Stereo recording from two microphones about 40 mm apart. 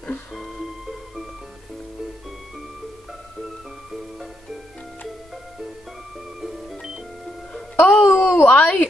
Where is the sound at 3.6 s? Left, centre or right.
Centre.